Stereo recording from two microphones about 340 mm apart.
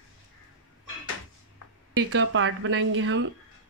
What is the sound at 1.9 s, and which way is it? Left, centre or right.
A woman's voice, right.